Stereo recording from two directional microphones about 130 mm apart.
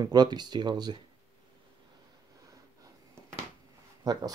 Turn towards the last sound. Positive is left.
turn(degrees=-30)  # may be behind; listen again after turning